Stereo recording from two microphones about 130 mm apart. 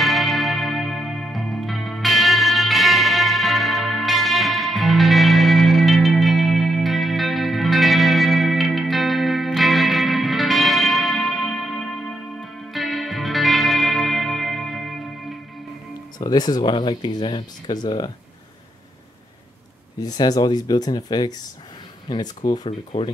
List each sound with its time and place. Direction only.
0.0 s music: centre (ahead or behind)
16.2 s speech: 30° left (ahead or behind)
20.0 s speech: 30° left (ahead or behind)
22.7 s speech: 45° left (ahead or behind)